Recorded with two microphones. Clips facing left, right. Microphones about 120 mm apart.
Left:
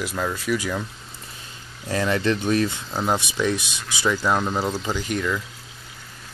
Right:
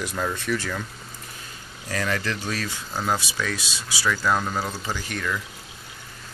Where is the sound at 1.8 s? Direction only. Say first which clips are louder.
Left 5 dB; 25° left (ahead or behind).